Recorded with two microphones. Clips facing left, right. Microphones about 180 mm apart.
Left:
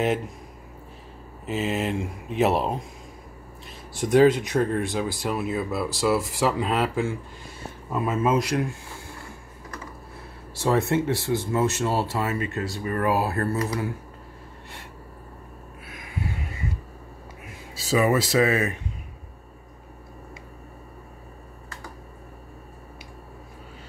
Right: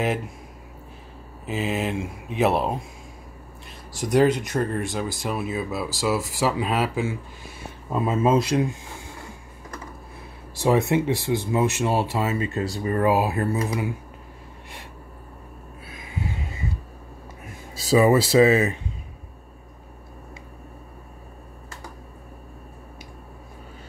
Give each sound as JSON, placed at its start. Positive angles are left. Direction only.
{"t": 1.4, "sound": "speech", "side_deg": 0}
{"t": 4.0, "sound": "speech", "side_deg": 0}
{"t": 7.9, "sound": "speech", "side_deg": -25}
{"t": 10.5, "sound": "speech", "side_deg": -15}
{"t": 15.9, "sound": "a sound", "side_deg": -25}
{"t": 17.7, "sound": "speech", "side_deg": -35}